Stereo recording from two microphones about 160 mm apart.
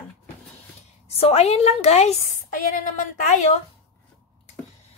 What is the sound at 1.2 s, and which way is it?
Speech, 40° left (ahead or behind).